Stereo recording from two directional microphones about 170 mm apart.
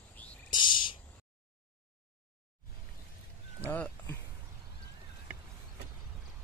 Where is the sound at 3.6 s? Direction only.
10° left (ahead or behind).